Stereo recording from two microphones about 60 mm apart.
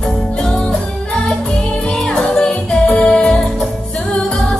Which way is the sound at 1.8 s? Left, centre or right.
Centre.